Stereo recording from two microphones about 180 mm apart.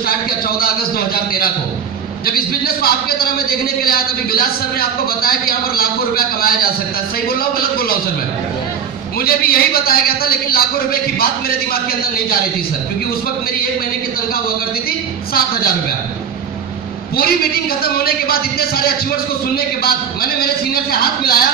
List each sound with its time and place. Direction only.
0.0 s a sound: 55° left (ahead or behind)
2.2 s a man's voice: 55° left (ahead or behind)
9.2 s a man's voice: 55° left (ahead or behind)
14.9 s a man's voice: 55° left (ahead or behind)
17.2 s a man's voice: 55° left (ahead or behind)